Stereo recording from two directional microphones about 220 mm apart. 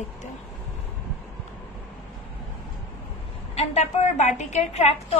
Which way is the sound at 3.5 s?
30° left (ahead or behind).